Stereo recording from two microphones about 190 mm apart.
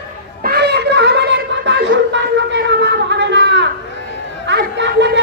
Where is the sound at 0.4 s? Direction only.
60° right (ahead or behind).